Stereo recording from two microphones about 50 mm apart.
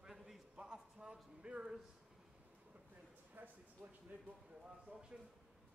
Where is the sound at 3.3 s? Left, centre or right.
Right.